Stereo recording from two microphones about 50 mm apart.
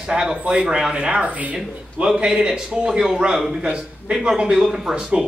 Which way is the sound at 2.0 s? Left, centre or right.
Centre.